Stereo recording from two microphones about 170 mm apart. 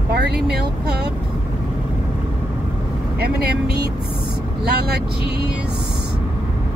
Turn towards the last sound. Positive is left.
turn(degrees=-70)  # may be behind; listen again after turning